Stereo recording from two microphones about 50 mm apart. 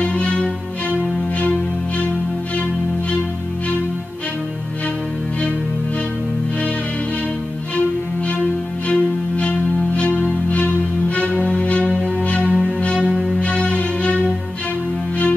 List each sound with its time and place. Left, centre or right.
0.0 s music: left
8.8 s music: left
13.1 s music: centre
13.4 s music: left